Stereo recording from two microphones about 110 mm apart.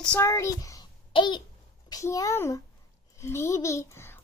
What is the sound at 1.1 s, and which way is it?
Speech, 45° left (ahead or behind).